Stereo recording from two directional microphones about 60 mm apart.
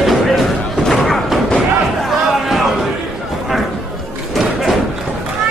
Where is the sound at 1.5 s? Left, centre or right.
Centre.